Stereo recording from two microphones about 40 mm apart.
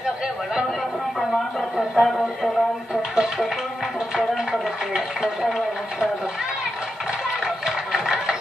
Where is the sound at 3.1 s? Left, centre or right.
Centre.